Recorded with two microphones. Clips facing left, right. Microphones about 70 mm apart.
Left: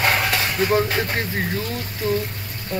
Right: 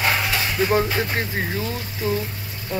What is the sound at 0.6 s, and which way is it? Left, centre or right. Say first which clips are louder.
Speech: even; centre.